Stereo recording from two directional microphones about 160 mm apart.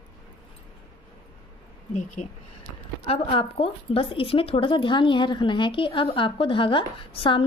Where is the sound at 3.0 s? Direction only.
35° left (ahead or behind).